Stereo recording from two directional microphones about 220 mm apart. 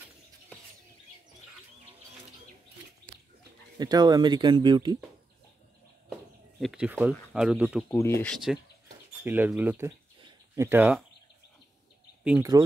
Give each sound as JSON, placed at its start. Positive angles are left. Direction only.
{"t": 3.7, "sound": "speech", "side_deg": -20}
{"t": 6.6, "sound": "speech", "side_deg": -5}
{"t": 7.9, "sound": "speech", "side_deg": 10}
{"t": 12.3, "sound": "speech", "side_deg": -15}